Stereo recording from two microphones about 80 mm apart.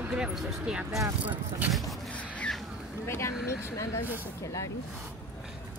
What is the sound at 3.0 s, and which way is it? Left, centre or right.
Speech, left.